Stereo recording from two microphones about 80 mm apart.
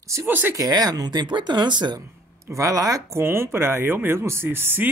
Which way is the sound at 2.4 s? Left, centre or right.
Right.